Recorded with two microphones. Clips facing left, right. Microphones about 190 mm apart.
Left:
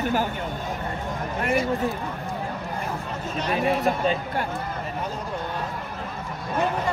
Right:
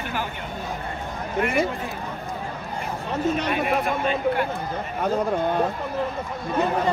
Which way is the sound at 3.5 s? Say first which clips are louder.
Left 1 dB; 35° left (ahead or behind).